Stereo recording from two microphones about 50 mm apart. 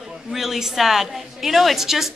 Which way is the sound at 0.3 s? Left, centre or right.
Centre.